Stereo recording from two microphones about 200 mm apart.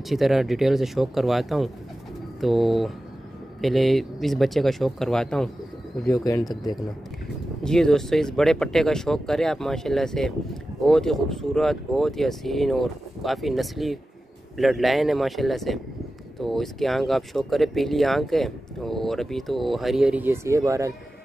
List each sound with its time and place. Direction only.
0.1 s speech: centre (ahead or behind)
6.0 s speech: 15° left (ahead or behind)
7.6 s speech: 5° left (ahead or behind); by 20.9 s 15° right (ahead or behind)